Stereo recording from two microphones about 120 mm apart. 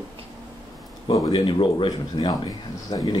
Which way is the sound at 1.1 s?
45° left (ahead or behind).